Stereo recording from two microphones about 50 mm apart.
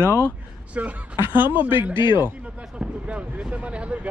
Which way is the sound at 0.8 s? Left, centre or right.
Right.